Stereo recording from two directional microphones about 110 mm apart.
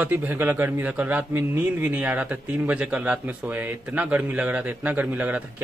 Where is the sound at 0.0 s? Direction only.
15° right (ahead or behind).